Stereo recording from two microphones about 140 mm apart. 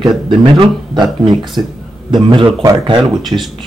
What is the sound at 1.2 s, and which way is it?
Speech, 35° right (ahead or behind).